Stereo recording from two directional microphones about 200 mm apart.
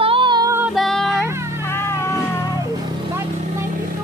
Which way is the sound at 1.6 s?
10° left (ahead or behind).